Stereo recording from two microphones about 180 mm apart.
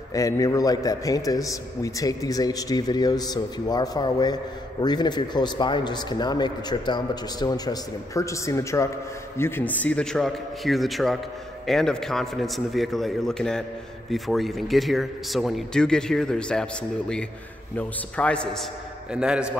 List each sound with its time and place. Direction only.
0.1 s a man's voice: 20° left (ahead or behind)
17.7 s speech: 5° left (ahead or behind)